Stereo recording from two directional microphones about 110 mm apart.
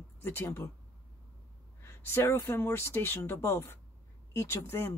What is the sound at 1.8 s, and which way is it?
Speech, 20° left (ahead or behind).